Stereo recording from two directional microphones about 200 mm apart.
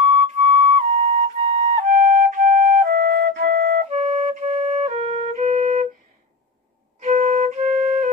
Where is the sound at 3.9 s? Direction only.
30° right (ahead or behind).